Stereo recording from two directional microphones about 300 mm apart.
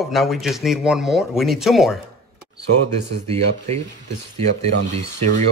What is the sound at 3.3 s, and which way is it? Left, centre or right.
Speech, right.